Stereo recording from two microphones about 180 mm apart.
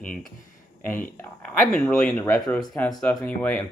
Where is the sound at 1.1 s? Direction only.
10° left (ahead or behind).